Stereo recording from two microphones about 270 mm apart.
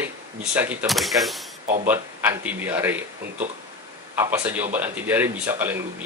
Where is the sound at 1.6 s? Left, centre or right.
Right.